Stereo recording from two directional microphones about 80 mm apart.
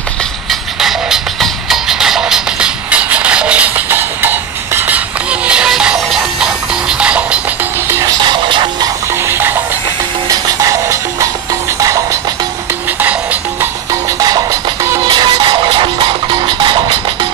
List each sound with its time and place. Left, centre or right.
0.5 s music: centre
8.2 s music: right
9.2 s music: right
10.3 s music: right
13.0 s music: right
14.2 s music: right
15.0 s music: right